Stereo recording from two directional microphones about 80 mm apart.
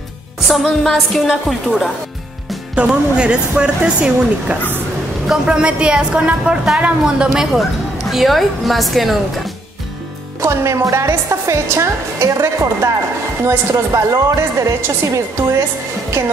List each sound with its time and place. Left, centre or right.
0.7 s a woman's voice: centre
2.7 s a woman's voice: centre
8.1 s a woman's voice: centre
10.4 s a woman's voice: right